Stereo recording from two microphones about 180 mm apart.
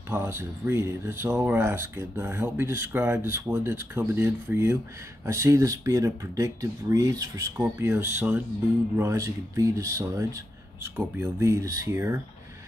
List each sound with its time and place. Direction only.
0.1 s speech: 15° right (ahead or behind)